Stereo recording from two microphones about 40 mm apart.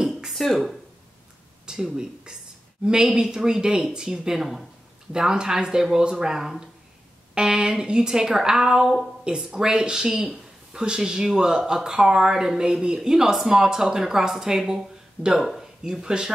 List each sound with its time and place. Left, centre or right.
0.3 s speech: centre
1.7 s speech: centre